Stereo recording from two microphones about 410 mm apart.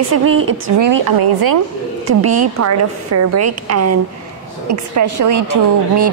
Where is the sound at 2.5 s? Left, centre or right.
Right.